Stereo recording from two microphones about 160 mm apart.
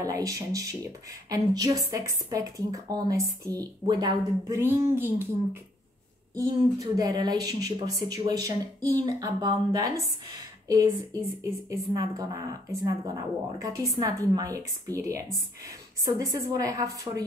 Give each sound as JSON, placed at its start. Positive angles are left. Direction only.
{"t": 0.0, "sound": "speech", "side_deg": -20}